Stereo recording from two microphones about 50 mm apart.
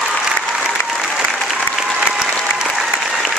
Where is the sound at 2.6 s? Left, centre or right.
Centre.